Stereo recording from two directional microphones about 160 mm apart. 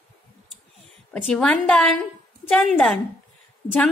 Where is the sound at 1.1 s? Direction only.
5° left (ahead or behind).